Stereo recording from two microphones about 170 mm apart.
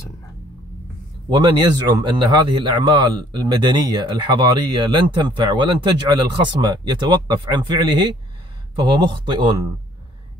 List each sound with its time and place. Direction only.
1.3 s speech: 25° right (ahead or behind)